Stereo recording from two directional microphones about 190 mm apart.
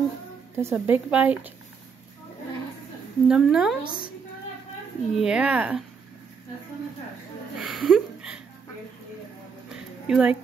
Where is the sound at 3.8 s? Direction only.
50° left (ahead or behind).